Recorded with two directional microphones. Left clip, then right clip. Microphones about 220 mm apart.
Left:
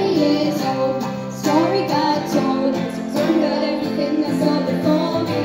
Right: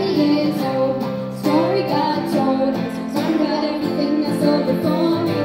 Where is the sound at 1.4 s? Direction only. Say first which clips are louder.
Even; 10° right (ahead or behind).